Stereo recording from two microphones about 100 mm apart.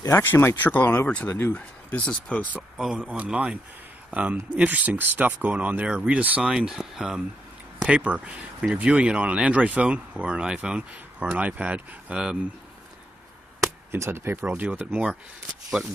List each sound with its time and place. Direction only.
0.1 s speech: 25° left (ahead or behind)
2.8 s speech: 10° right (ahead or behind)
13.9 s speech: 25° right (ahead or behind); by 15.1 s 5° right (ahead or behind)